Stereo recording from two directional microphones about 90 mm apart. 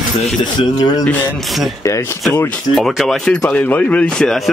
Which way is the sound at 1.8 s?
35° left (ahead or behind).